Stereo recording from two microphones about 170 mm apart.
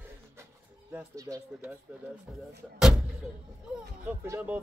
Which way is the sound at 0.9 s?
15° right (ahead or behind).